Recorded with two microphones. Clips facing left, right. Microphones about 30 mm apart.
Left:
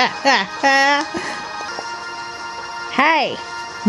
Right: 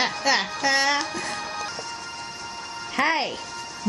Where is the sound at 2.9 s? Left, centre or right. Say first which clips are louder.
Left 8 dB; left.